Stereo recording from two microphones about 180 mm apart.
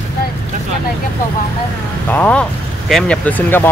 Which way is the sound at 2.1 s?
10° left (ahead or behind).